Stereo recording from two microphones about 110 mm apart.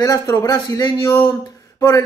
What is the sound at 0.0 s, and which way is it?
Speech, 30° left (ahead or behind).